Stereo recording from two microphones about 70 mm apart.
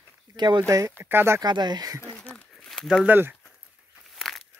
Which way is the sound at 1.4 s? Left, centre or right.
Right.